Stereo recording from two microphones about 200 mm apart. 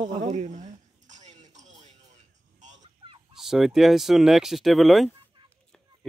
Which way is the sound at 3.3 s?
Centre (ahead or behind).